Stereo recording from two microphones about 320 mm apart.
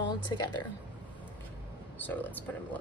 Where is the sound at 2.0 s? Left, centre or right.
Centre.